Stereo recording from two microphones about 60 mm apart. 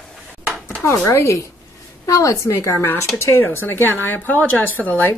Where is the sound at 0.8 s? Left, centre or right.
Left.